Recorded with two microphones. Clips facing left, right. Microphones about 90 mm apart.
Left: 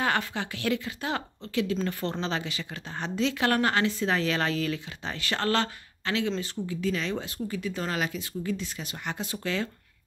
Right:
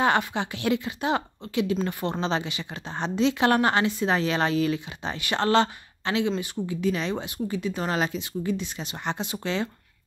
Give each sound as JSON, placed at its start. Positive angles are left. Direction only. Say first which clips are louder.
{"t": 0.0, "sound": "speech", "louder": "right 5 dB", "side_deg": -20}